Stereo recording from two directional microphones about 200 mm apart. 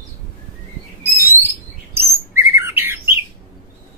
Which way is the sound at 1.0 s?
10° right (ahead or behind).